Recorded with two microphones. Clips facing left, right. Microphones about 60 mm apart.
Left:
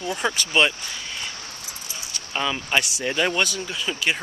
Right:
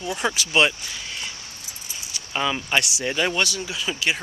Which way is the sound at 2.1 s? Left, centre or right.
Centre.